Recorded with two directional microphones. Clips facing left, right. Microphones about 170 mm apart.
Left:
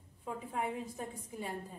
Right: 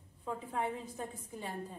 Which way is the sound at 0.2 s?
10° left (ahead or behind).